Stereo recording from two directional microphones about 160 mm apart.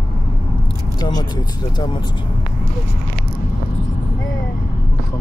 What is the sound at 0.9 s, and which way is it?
Speech, 25° left (ahead or behind).